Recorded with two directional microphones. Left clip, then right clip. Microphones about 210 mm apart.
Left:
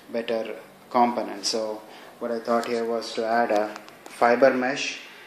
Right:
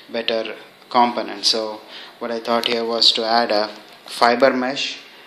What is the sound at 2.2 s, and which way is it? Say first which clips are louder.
Speech: right 4 dB; 15° right (ahead or behind).